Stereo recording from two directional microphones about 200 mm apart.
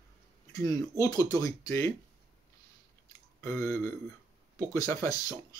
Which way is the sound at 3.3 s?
15° left (ahead or behind).